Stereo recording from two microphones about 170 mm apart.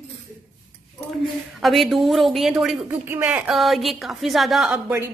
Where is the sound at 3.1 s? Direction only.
15° right (ahead or behind).